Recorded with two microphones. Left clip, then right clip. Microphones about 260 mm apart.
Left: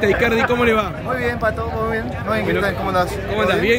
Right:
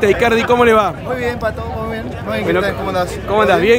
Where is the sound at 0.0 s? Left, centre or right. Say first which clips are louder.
Right 3 dB; centre.